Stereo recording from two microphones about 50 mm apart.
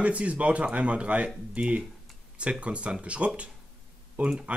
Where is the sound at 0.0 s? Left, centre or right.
Right.